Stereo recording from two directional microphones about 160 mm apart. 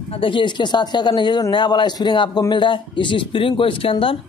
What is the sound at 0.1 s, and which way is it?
Speech, 30° left (ahead or behind).